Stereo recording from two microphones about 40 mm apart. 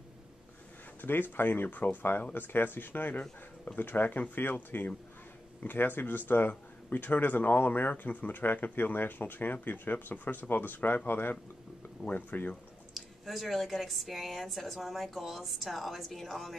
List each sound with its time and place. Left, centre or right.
1.0 s speech: left
12.1 s speech: left
12.9 s a woman's voice: centre